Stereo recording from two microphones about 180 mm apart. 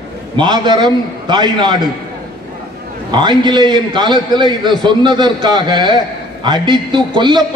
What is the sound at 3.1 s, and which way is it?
A man's voice, 25° right (ahead or behind).